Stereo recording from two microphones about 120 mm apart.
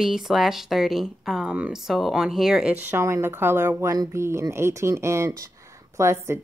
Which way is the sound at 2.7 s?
20° right (ahead or behind).